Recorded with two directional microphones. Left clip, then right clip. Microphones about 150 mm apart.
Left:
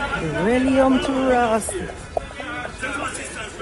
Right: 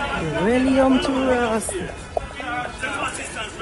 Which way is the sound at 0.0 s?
Centre (ahead or behind).